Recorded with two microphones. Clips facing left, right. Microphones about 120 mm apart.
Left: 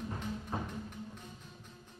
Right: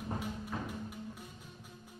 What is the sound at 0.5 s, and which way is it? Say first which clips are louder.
Music: left 2 dB; 30° left (ahead or behind).